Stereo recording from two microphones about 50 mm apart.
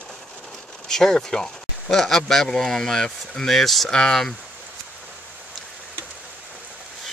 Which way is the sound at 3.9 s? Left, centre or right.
Centre.